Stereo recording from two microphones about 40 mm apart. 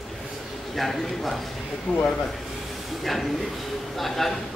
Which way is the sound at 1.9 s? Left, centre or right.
Left.